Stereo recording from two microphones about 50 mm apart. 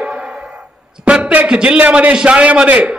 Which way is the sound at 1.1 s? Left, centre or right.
Right.